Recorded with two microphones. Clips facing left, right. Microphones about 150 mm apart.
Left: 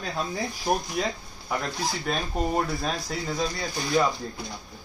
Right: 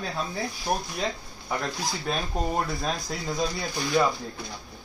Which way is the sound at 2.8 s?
Centre (ahead or behind).